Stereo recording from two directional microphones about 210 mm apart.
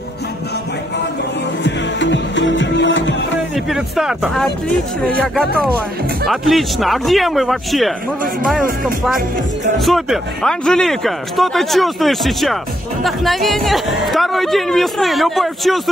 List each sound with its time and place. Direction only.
1.6 s music: 60° left (ahead or behind)
3.5 s speech: centre (ahead or behind)
9.8 s speech: centre (ahead or behind)